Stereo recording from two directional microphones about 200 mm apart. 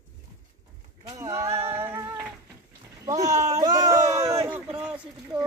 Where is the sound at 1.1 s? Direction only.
15° right (ahead or behind).